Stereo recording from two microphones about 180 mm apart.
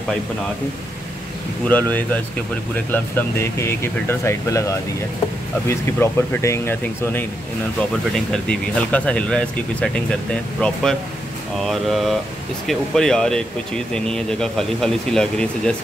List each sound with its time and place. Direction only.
1.7 s speech: 10° left (ahead or behind)
8.3 s speech: 5° left (ahead or behind)